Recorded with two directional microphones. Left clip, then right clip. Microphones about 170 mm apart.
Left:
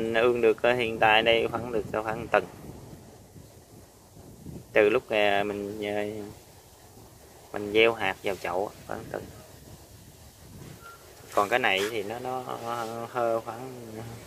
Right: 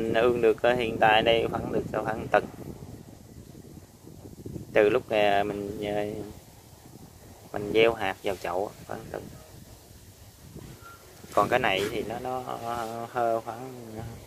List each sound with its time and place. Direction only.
0.0 s speech: 10° right (ahead or behind)
4.7 s speech: 15° right (ahead or behind)
7.5 s speech: 10° right (ahead or behind)
11.3 s speech: 20° right (ahead or behind)